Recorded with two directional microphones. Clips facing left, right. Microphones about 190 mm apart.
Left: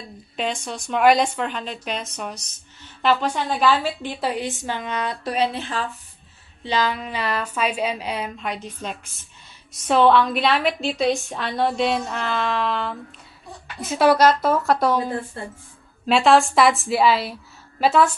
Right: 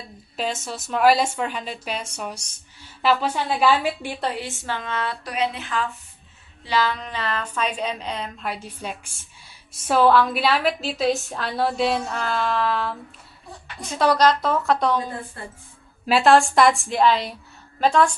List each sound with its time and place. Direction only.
0.7 s speech: 5° right (ahead or behind)
4.2 s a woman's voice: 15° left (ahead or behind)
5.3 s speech: 30° left (ahead or behind)
6.6 s a woman's voice: 20° left (ahead or behind)
8.8 s a woman's voice: 10° right (ahead or behind)
16.1 s a woman's voice: centre (ahead or behind)